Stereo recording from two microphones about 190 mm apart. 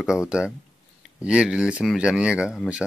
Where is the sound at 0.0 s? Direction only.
5° right (ahead or behind).